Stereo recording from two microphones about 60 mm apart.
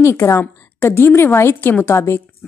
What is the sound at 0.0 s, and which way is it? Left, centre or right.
A woman's voice, left.